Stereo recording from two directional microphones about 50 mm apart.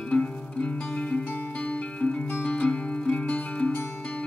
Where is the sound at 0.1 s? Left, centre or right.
Left.